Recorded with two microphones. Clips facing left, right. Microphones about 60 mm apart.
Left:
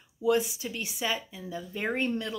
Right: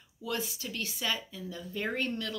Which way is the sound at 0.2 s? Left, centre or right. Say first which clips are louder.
Left 10 dB; centre.